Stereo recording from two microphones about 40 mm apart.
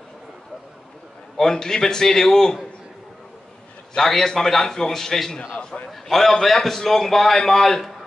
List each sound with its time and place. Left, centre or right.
1.3 s a man's voice: centre
3.9 s a man's voice: centre
5.6 s a man's voice: left
5.9 s a man's voice: centre